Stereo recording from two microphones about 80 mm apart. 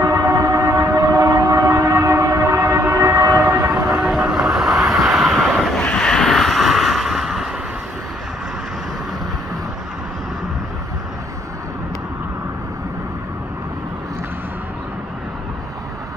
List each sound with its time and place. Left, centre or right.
0.0 s train: right
3.9 s vehicle: centre
5.8 s vehicle: centre